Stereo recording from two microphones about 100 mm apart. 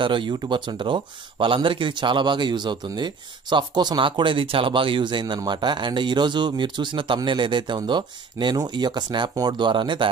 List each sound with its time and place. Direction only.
0.0 s speech: 55° right (ahead or behind)